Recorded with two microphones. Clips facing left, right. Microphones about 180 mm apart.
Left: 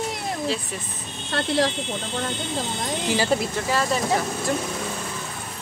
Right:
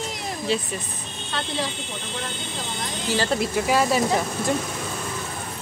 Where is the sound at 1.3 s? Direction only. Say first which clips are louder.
Left 6 dB; 80° left.